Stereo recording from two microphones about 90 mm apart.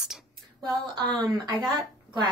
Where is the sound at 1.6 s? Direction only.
60° right (ahead or behind).